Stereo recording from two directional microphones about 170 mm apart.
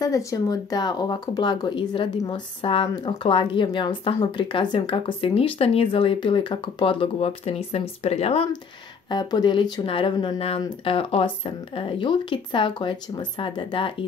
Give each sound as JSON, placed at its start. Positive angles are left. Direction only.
{"t": 0.0, "sound": "speech", "side_deg": 20}
{"t": 9.1, "sound": "speech", "side_deg": 25}